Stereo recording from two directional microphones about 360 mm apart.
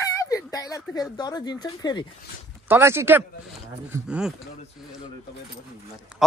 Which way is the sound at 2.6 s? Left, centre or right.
Centre.